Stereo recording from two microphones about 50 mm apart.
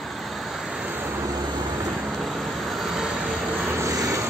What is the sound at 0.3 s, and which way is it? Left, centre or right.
Vehicle, centre.